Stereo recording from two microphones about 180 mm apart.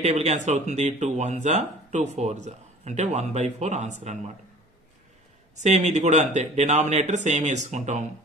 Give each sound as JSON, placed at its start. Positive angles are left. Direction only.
{"t": 0.0, "sound": "speech", "side_deg": -40}
{"t": 5.6, "sound": "speech", "side_deg": -40}